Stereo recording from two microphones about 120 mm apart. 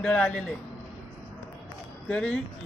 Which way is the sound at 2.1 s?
10° left (ahead or behind).